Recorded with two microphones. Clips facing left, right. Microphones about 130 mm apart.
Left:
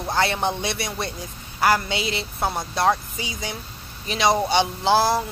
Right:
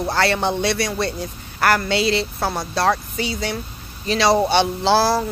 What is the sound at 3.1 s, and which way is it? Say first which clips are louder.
Speech: right 7 dB; 70° right (ahead or behind).